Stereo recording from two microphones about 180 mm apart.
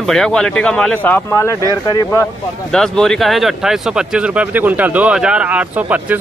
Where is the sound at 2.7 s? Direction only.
5° left (ahead or behind).